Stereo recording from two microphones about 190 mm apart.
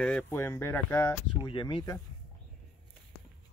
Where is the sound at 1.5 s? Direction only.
25° left (ahead or behind).